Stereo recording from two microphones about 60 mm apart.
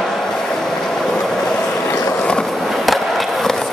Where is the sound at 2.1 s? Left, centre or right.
Centre.